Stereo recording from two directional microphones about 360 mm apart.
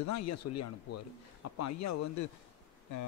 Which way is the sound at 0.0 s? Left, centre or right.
Left.